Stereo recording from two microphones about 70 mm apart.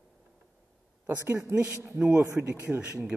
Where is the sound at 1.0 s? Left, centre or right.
Right.